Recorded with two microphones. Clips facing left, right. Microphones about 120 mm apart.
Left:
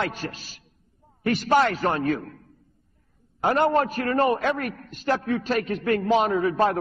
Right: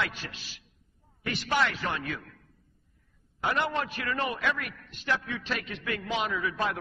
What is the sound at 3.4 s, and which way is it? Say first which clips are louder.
A man's voice: left 9 dB; 45° left (ahead or behind).